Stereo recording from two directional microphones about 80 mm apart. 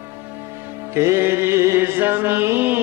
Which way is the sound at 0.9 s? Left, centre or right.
Right.